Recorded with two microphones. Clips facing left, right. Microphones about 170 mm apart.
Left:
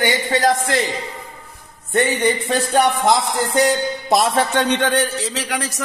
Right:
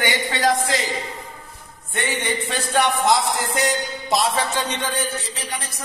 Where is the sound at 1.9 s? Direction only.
40° left (ahead or behind).